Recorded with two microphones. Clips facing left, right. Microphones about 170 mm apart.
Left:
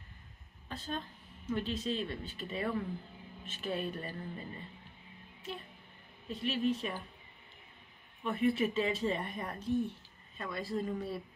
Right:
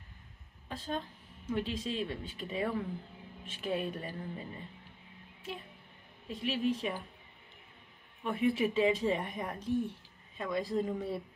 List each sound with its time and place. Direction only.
0.7 s speech: 10° right (ahead or behind)
6.2 s speech: 10° right (ahead or behind)
8.2 s speech: 10° right (ahead or behind)